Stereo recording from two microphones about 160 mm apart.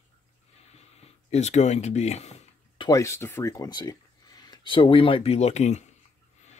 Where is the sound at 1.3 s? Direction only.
45° left (ahead or behind).